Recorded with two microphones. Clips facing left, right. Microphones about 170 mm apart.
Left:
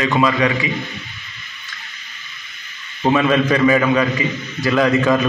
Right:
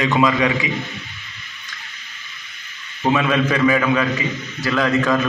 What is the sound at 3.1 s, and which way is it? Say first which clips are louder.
A man's voice: left 3 dB; centre (ahead or behind).